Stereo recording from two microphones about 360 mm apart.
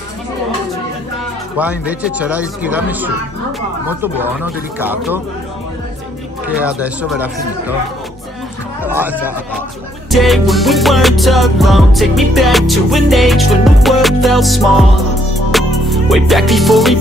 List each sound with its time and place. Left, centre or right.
1.6 s music: centre
6.4 s music: centre
8.8 s a sound: centre
10.1 s music: centre